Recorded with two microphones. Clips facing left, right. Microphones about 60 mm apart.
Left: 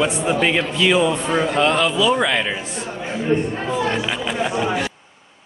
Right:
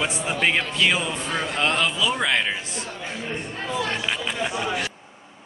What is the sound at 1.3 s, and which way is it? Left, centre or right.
Speech, centre.